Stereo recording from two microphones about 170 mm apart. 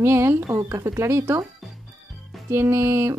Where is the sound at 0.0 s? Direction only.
15° right (ahead or behind).